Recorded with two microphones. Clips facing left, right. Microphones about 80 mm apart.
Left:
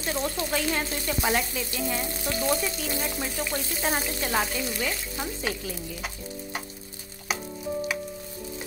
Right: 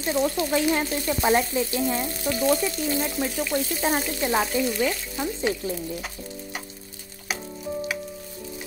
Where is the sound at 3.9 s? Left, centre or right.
Centre.